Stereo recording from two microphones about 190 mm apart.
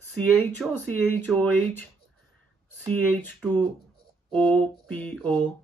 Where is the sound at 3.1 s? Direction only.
10° left (ahead or behind).